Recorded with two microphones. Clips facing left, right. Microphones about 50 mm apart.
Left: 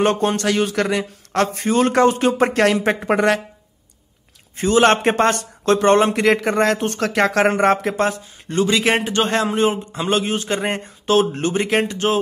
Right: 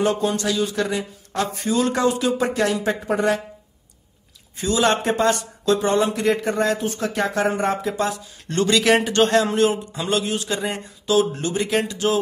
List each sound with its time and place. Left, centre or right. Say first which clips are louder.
0.0 s speech: left 3 dB; left
4.6 s a man's voice: left 5 dB; left
8.0 s speech: left 4 dB; left
8.5 s speech: left 1 dB; centre
8.8 s speech: right 1 dB; left